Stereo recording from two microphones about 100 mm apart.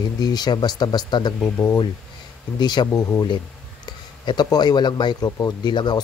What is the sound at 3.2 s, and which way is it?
Speech, 50° left (ahead or behind).